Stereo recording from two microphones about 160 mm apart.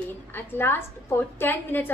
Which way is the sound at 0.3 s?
15° left (ahead or behind).